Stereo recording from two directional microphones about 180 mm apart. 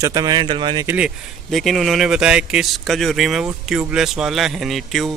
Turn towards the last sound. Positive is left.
turn(degrees=0)  # may be behind; listen again after turning